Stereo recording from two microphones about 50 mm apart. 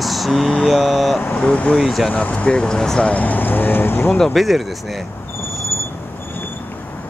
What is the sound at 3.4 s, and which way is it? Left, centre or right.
Speech, left.